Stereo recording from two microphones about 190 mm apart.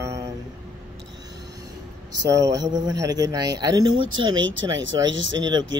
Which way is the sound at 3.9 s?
90° right.